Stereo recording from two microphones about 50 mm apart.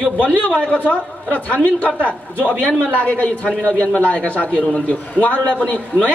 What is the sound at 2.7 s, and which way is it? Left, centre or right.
A man's voice, left.